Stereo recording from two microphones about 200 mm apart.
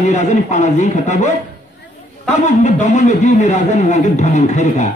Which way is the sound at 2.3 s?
35° left (ahead or behind).